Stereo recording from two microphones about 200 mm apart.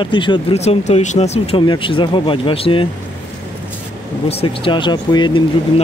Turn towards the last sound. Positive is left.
turn(degrees=25)  # may be behind; listen again after turning